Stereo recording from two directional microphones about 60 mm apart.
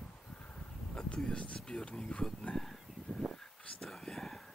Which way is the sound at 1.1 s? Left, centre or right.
Centre.